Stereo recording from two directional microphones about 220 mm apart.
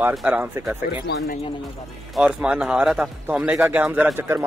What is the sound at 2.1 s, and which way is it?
A man's voice, 5° right (ahead or behind).